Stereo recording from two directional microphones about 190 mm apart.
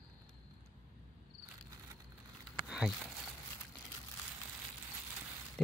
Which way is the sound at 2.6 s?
5° right (ahead or behind).